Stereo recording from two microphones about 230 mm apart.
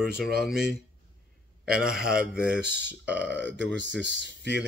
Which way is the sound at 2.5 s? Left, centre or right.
Right.